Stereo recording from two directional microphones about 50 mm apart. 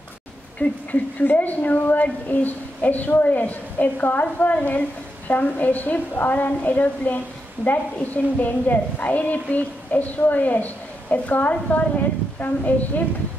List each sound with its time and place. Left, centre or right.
0.6 s a woman's voice: left